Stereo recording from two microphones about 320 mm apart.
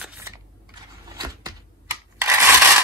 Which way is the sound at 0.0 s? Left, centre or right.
Centre.